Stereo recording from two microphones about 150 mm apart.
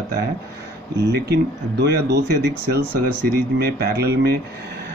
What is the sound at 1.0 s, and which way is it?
Speech, 90° right.